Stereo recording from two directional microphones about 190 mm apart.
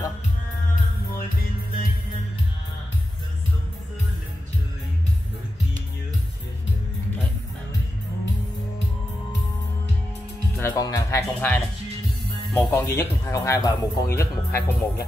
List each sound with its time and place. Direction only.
10.6 s music: 15° left (ahead or behind)
12.5 s speech: 15° left (ahead or behind)